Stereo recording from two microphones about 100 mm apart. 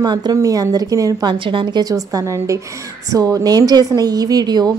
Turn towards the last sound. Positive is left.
turn(degrees=-40)  # may be behind; listen again after turning